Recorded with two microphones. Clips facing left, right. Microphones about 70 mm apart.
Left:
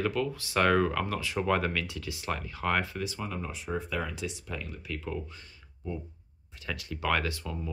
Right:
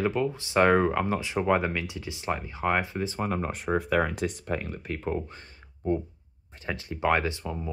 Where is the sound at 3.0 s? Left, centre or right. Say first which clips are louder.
Right 6 dB; right.